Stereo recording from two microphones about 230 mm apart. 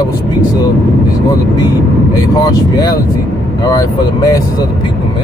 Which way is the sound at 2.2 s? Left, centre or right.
Centre.